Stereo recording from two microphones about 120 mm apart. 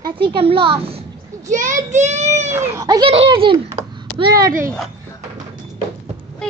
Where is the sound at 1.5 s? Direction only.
90° right; by 2.5 s 65° right (ahead or behind).